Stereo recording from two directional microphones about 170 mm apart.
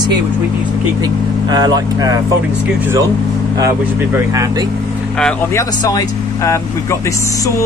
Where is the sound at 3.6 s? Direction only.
20° right (ahead or behind).